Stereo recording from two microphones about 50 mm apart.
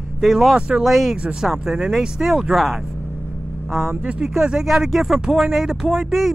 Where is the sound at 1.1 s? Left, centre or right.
Right.